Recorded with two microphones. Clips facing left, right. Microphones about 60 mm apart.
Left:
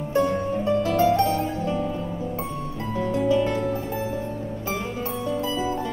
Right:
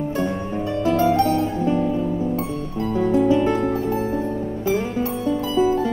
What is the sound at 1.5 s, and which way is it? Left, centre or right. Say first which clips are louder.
Music: right 5 dB; right.